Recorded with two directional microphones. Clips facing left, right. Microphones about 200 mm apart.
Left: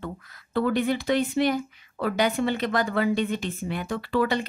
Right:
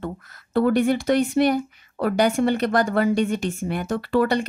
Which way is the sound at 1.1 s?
50° right (ahead or behind).